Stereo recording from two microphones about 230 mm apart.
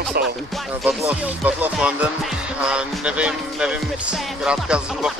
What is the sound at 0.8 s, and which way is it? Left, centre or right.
Music, centre.